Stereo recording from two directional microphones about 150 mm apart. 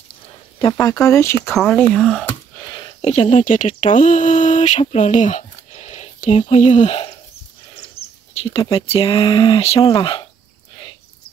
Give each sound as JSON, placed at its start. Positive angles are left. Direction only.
{"t": 0.7, "sound": "speech", "side_deg": 20}
{"t": 1.5, "sound": "speech", "side_deg": 0}
{"t": 2.2, "sound": "a sound", "side_deg": 25}
{"t": 3.0, "sound": "speech", "side_deg": 45}
{"t": 8.4, "sound": "speech", "side_deg": 40}
{"t": 9.8, "sound": "speech", "side_deg": 25}